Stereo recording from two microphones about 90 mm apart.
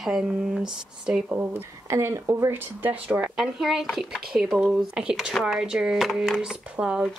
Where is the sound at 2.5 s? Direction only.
20° right (ahead or behind).